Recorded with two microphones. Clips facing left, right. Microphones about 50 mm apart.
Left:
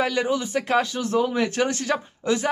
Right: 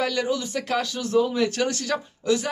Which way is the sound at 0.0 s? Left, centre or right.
Left.